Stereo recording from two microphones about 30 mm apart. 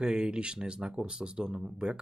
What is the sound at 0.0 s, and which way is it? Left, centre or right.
Speech, right.